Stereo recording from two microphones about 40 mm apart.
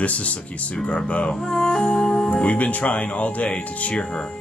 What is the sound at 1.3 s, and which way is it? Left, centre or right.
Music, centre.